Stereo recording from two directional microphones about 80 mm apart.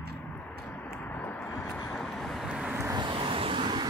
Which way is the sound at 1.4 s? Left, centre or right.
Centre.